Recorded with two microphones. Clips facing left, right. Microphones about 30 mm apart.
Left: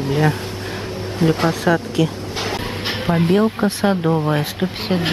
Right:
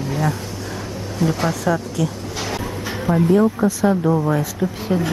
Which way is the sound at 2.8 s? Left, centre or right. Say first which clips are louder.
Even; left.